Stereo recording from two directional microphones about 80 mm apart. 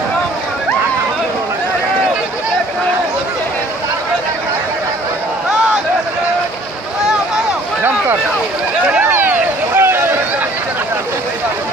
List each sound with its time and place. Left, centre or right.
9.0 s vehicle: right